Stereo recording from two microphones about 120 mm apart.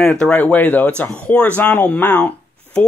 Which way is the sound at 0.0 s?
5° left (ahead or behind).